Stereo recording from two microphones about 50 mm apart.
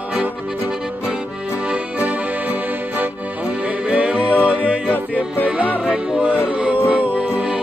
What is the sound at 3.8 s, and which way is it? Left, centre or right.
Music, right.